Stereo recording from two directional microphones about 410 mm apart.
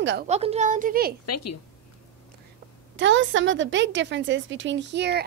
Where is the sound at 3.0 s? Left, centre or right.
Right.